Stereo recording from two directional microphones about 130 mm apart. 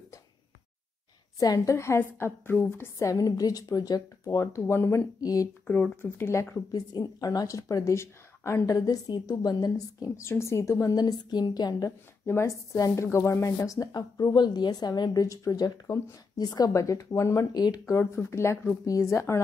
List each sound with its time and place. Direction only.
1.4 s a woman's voice: 25° left (ahead or behind)
5.7 s a woman's voice: 10° left (ahead or behind)